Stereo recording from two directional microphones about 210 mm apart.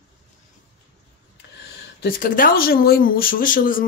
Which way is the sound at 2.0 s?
45° left (ahead or behind).